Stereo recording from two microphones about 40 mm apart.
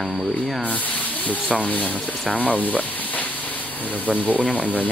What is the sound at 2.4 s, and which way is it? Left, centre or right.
Sizzle, left.